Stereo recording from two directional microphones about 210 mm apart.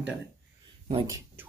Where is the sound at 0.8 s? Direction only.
20° right (ahead or behind).